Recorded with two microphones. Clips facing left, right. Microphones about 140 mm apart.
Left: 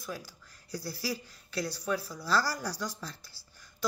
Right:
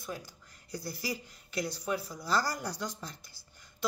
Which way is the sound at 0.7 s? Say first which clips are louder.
Left 1 dB; 20° right (ahead or behind).